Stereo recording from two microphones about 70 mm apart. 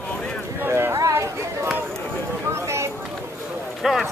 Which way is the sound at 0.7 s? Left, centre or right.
Right.